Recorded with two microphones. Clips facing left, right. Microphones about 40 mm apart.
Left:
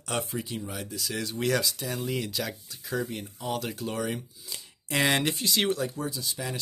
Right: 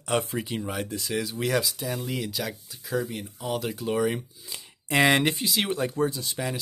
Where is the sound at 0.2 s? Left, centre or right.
Right.